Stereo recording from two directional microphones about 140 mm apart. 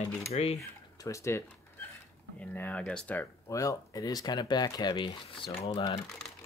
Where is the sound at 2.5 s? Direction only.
15° left (ahead or behind).